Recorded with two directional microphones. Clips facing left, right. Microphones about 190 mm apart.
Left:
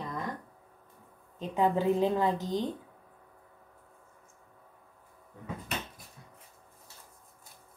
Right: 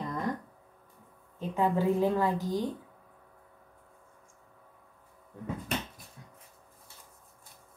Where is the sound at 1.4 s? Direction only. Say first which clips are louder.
Even; 20° left (ahead or behind).